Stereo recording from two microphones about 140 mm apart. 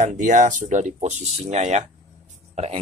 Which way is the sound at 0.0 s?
60° right (ahead or behind).